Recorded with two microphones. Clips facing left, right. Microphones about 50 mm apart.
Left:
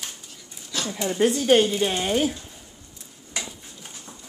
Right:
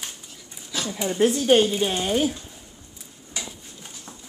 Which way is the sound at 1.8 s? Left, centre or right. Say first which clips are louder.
Even; centre.